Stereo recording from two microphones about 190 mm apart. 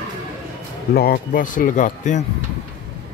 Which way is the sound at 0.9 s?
50° left (ahead or behind).